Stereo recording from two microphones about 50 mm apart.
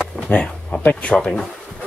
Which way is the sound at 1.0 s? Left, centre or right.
Left.